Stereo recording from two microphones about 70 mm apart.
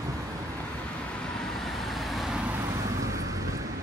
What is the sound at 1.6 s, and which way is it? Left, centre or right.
Vehicle, centre.